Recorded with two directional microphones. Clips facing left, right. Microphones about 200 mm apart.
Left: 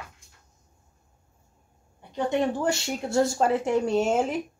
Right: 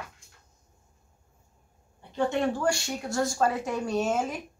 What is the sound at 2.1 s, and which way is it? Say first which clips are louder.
Speech: left 1 dB; 20° left (ahead or behind).